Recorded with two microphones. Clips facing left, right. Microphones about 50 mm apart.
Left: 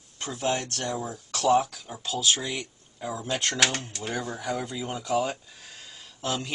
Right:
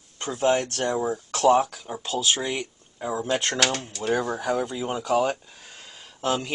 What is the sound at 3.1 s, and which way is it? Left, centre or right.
Speech, centre.